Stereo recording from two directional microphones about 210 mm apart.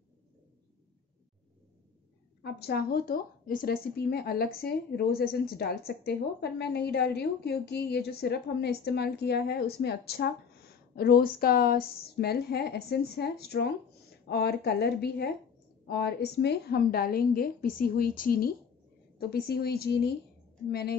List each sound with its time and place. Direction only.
2.4 s speech: 50° left (ahead or behind)